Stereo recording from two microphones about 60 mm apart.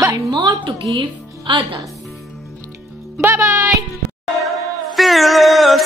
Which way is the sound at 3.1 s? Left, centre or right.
Right.